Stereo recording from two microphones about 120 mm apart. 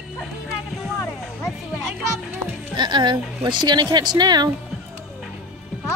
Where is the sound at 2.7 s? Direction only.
40° right (ahead or behind).